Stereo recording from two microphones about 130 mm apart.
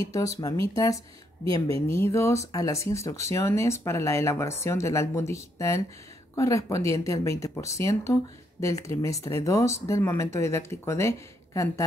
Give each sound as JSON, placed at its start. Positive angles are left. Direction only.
{"t": 0.7, "sound": "speech", "side_deg": 25}